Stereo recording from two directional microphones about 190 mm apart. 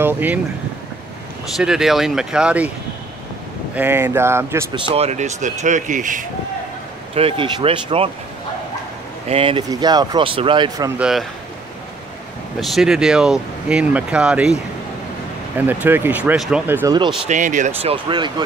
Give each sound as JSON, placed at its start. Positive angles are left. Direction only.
{"t": 0.0, "sound": "speech", "side_deg": -10}
{"t": 1.6, "sound": "speech", "side_deg": -5}
{"t": 3.7, "sound": "speech", "side_deg": -10}
{"t": 4.7, "sound": "speech", "side_deg": -30}
{"t": 7.2, "sound": "speech", "side_deg": -30}
{"t": 9.3, "sound": "speech", "side_deg": -30}
{"t": 11.0, "sound": "speech", "side_deg": 0}
{"t": 12.5, "sound": "speech", "side_deg": 0}
{"t": 17.3, "sound": "speech", "side_deg": -40}
{"t": 18.0, "sound": "speech", "side_deg": -25}